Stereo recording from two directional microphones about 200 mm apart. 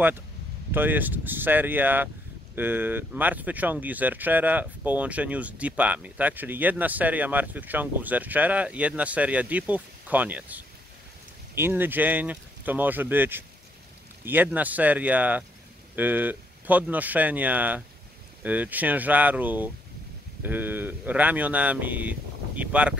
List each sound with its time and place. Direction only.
0.7 s speech: 10° right (ahead or behind)